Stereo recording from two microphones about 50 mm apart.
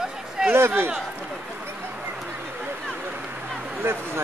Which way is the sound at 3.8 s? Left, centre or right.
Right.